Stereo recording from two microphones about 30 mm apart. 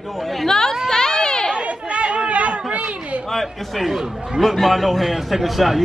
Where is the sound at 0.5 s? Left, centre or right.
Centre.